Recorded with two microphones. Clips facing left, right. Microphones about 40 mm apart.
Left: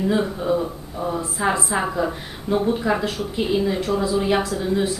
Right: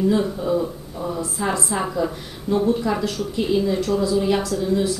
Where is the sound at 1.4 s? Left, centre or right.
Left.